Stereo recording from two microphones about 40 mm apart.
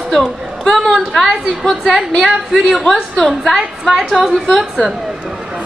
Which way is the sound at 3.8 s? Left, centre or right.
Centre.